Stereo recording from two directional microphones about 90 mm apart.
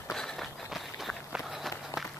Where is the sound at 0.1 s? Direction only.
5° left (ahead or behind).